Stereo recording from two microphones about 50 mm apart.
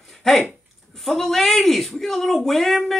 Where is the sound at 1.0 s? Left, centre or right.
Centre.